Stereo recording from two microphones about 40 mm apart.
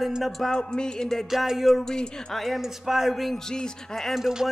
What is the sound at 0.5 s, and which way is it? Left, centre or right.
Music, centre.